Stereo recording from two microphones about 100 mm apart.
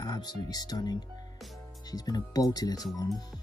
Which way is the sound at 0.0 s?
40° left (ahead or behind).